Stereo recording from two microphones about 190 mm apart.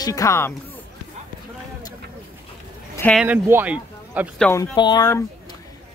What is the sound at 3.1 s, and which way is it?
Speech, 10° right (ahead or behind).